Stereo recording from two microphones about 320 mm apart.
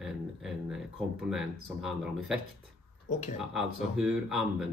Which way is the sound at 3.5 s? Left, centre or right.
Centre.